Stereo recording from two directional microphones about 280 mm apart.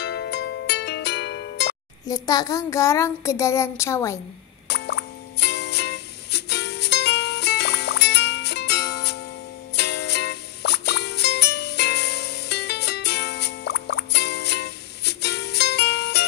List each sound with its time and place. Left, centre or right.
0.0 s music: left
2.0 s child singing: centre
4.6 s music: left